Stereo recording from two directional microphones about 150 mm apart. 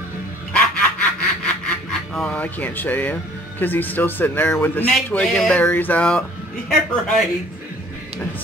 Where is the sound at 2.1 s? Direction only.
10° left (ahead or behind).